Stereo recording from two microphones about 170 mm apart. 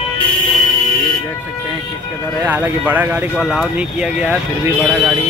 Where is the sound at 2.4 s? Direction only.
10° right (ahead or behind).